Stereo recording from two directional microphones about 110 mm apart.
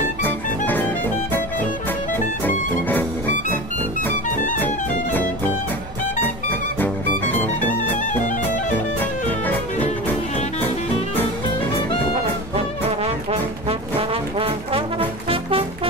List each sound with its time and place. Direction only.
0.2 s music: 15° left (ahead or behind)
4.6 s music: 15° left (ahead or behind)
8.7 s music: 15° left (ahead or behind)
12.5 s brass instrument: 65° right (ahead or behind)